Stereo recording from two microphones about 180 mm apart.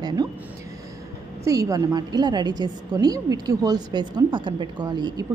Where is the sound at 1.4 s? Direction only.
20° right (ahead or behind).